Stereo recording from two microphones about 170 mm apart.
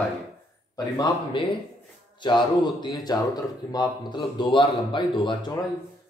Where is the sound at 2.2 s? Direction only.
25° left (ahead or behind).